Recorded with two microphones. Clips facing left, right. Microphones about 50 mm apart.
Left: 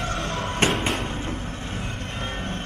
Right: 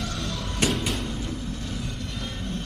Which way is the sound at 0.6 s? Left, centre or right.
Left.